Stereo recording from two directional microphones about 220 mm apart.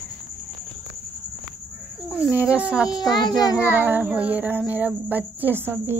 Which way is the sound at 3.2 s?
20° left (ahead or behind).